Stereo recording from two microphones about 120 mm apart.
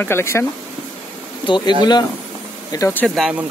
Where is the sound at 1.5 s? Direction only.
40° left (ahead or behind).